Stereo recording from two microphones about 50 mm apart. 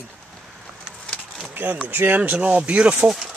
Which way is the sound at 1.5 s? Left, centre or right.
Right.